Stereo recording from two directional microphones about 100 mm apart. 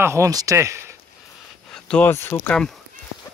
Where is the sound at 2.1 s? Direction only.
20° left (ahead or behind).